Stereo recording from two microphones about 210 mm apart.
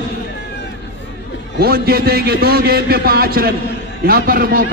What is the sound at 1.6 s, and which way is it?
A man's voice, 45° right (ahead or behind).